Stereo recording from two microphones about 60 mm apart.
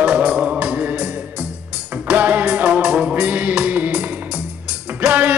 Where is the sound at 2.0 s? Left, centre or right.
Right.